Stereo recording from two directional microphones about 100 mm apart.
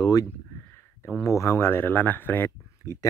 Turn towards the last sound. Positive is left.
turn(degrees=30)  # may be behind; listen again after turning